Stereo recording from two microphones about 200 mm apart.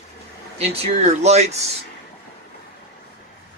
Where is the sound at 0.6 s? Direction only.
30° right (ahead or behind).